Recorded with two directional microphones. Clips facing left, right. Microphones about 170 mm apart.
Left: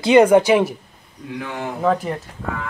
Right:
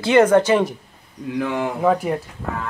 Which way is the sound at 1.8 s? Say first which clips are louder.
Even; 10° right (ahead or behind).